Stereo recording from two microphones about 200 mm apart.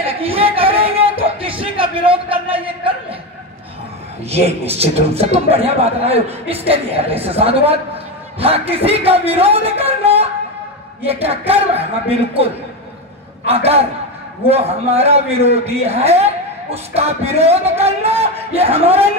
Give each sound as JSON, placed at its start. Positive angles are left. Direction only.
{"t": 0.0, "sound": "a sound", "side_deg": -30}
{"t": 4.3, "sound": "a man's voice", "side_deg": -30}
{"t": 13.5, "sound": "a man's voice", "side_deg": -30}